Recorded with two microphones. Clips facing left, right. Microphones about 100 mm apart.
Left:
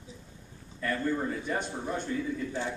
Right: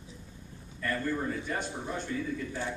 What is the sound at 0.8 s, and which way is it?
A man's voice, 5° left (ahead or behind).